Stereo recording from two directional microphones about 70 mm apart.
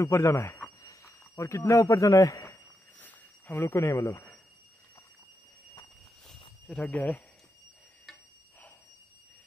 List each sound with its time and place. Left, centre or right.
0.0 s speech: left
3.0 s a sound: left
3.6 s speech: left
6.8 s speech: left